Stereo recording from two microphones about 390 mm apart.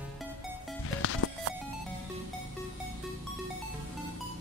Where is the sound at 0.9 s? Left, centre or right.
Left.